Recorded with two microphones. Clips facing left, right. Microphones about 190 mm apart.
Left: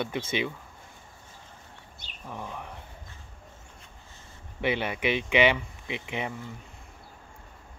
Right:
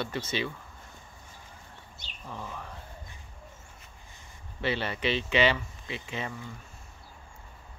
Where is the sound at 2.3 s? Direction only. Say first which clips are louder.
Left 2 dB; 15° left (ahead or behind).